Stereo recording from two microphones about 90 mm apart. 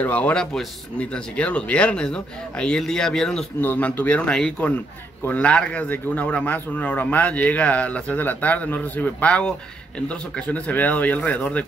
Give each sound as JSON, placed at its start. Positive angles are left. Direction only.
{"t": 0.0, "sound": "speech", "side_deg": 15}
{"t": 3.6, "sound": "speech", "side_deg": 15}